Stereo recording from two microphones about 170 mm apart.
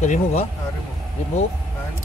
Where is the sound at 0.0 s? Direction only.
40° left (ahead or behind).